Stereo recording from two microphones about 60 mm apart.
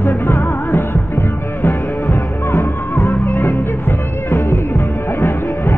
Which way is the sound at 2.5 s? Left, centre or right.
Left.